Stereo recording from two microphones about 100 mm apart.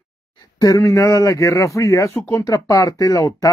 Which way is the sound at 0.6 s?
35° left (ahead or behind).